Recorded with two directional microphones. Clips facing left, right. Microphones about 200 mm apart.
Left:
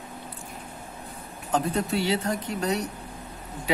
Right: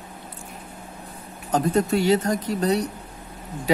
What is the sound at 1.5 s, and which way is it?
Speech, 45° right (ahead or behind).